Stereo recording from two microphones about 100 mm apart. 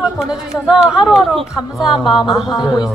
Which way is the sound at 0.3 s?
5° right (ahead or behind).